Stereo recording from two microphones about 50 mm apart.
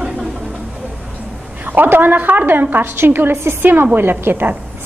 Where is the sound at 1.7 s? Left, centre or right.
Right.